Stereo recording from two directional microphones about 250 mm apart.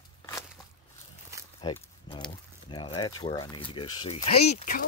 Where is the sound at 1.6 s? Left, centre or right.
Centre.